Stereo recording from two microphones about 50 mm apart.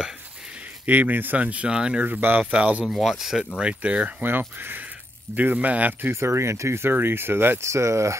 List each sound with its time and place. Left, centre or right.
0.8 s speech: right
1.4 s speech: right
2.0 s speech: right
2.5 s speech: right
2.9 s speech: centre
3.5 s speech: right
4.2 s speech: right
6.1 s speech: right
6.9 s speech: right
7.6 s speech: right